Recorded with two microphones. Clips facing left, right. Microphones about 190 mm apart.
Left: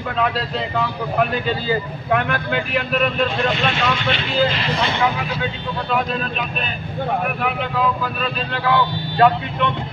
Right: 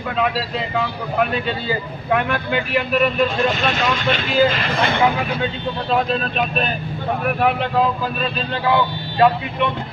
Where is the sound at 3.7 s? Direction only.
40° right (ahead or behind).